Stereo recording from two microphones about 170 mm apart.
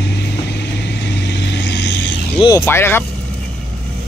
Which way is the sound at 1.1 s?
90° left.